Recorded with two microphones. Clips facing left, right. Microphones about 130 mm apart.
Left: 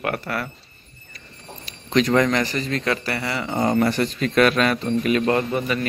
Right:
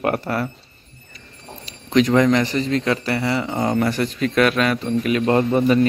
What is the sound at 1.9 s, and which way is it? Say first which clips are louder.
A man's voice: right 3 dB; 15° right (ahead or behind).